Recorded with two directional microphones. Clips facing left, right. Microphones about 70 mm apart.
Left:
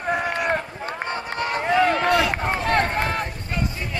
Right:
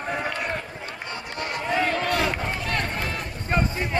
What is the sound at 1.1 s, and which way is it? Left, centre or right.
Run, left.